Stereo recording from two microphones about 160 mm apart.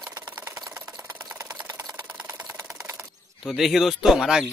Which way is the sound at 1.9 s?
15° right (ahead or behind).